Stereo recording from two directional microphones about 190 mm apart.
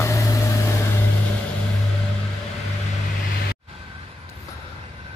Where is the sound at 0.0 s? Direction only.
15° left (ahead or behind).